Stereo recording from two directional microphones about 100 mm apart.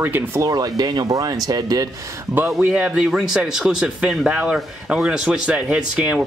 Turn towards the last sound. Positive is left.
turn(degrees=-10)  # may be behind; listen again after turning